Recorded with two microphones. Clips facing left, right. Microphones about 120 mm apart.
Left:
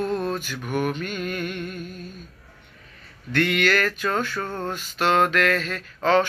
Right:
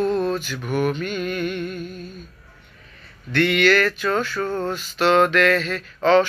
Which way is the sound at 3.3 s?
40° left (ahead or behind).